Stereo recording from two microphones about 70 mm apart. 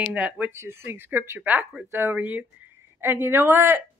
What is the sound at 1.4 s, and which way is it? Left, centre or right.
Speech, right.